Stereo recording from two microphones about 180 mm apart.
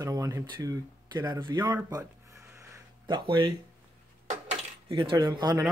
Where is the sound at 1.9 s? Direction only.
15° right (ahead or behind).